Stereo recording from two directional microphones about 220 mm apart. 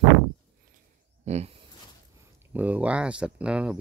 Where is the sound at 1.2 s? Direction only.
30° right (ahead or behind).